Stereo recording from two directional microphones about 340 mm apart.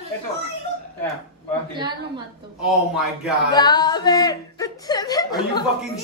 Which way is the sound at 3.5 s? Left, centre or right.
Centre.